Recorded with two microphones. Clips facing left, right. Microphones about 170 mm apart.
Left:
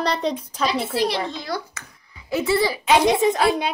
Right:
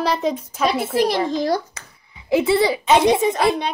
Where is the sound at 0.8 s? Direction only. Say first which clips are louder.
Right 4 dB; 50° right (ahead or behind).